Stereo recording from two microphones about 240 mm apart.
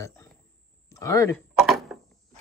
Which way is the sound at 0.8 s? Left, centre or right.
Centre.